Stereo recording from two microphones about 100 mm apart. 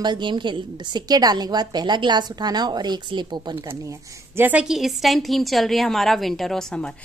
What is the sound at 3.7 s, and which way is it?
Speech, 25° right (ahead or behind).